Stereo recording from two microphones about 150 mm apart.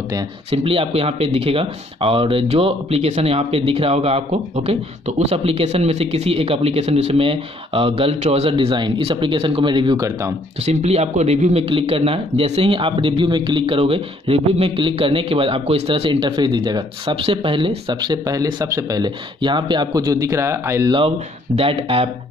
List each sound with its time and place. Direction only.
0.5 s speech: 40° right (ahead or behind); by 10.3 s 20° right (ahead or behind)
10.6 s speech: 45° right (ahead or behind); by 20.9 s 20° right (ahead or behind)
21.5 s speech: 40° right (ahead or behind)